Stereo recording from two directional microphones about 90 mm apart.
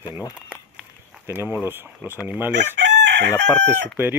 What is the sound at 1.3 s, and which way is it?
Speech, 25° right (ahead or behind).